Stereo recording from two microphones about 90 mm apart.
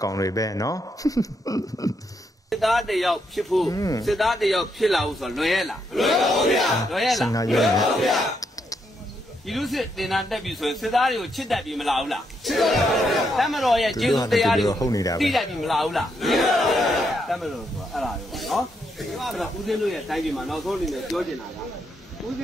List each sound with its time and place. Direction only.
0.0 s speech: 40° left (ahead or behind)
2.5 s a man's voice: centre (ahead or behind)
3.6 s speech: 40° left (ahead or behind)
4.0 s a man's voice: centre (ahead or behind)
9.5 s a man's voice: centre (ahead or behind)
14.7 s speech: 40° left (ahead or behind)
15.1 s a man's voice: centre (ahead or behind)